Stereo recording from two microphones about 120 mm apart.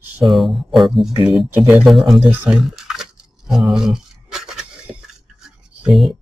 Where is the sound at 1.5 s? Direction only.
15° right (ahead or behind).